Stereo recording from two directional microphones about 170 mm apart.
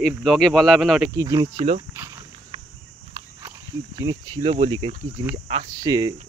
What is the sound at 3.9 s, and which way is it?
Speech, 25° right (ahead or behind).